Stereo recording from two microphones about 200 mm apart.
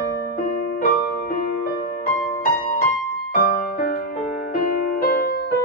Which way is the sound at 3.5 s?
45° left (ahead or behind).